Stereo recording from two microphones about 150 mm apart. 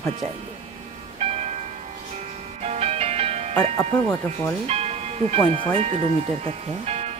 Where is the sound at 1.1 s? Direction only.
45° right (ahead or behind).